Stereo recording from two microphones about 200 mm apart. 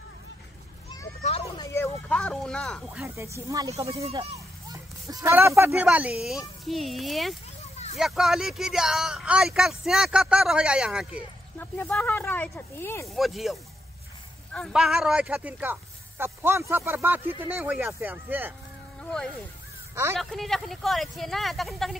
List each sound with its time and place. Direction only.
1.2 s vehicle: 30° left (ahead or behind)
1.6 s a sound: 15° left (ahead or behind)
3.2 s speech: 15° right (ahead or behind)
3.7 s speech: 30° right (ahead or behind)
4.7 s speech: 15° right (ahead or behind)
7.7 s a sound: 35° left (ahead or behind)
8.0 s speech: centre (ahead or behind)
11.5 s speech: 10° left (ahead or behind)
13.1 s speech: centre (ahead or behind)
20.2 s speech: centre (ahead or behind)